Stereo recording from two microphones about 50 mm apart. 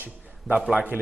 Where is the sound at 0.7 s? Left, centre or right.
Right.